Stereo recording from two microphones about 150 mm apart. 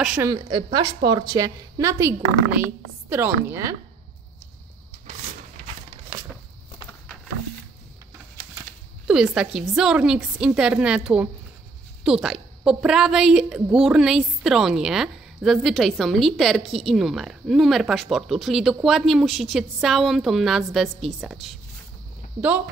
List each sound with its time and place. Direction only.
0.2 s a woman's voice: 30° right (ahead or behind)
9.0 s a woman's voice: 5° right (ahead or behind)